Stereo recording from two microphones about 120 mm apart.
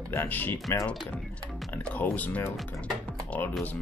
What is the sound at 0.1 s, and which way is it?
Speech, 15° left (ahead or behind).